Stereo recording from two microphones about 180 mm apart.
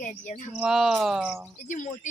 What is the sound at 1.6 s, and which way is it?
Speech, 45° left (ahead or behind).